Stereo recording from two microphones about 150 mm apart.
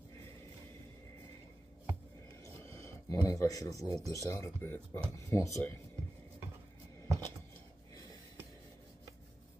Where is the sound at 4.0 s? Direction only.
20° right (ahead or behind).